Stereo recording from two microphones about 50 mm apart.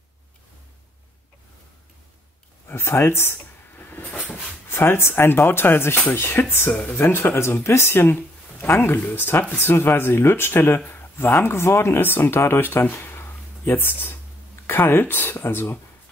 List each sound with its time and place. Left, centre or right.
2.7 s a sound: left
4.6 s speech: left
6.7 s speech: left
7.0 s speech: left